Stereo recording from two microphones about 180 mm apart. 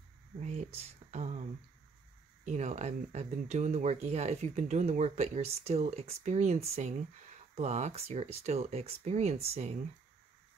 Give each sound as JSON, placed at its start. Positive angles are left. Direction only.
{"t": 0.4, "sound": "speech", "side_deg": -40}
{"t": 2.4, "sound": "speech", "side_deg": -40}